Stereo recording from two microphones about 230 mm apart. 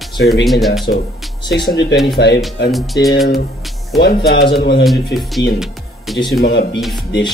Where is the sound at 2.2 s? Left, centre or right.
Left.